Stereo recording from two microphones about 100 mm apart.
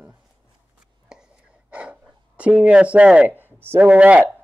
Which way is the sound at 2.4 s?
15° right (ahead or behind).